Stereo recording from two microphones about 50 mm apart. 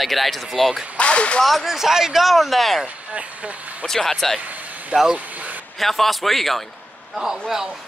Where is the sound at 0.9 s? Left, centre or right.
Left.